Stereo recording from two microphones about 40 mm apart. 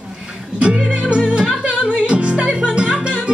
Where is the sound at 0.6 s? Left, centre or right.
Right.